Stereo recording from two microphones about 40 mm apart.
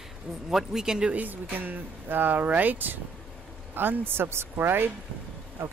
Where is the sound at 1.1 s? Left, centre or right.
Right.